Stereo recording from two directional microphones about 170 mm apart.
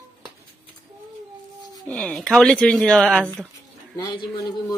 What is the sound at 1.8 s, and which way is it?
Speech, 5° left (ahead or behind).